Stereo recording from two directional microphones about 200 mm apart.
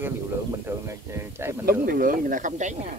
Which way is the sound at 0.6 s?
15° right (ahead or behind).